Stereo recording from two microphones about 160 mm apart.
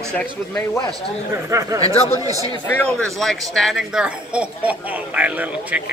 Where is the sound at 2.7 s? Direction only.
5° left (ahead or behind); by 5.8 s 10° right (ahead or behind).